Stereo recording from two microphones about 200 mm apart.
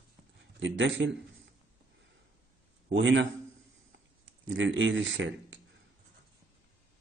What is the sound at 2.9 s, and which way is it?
Speech, 65° right (ahead or behind).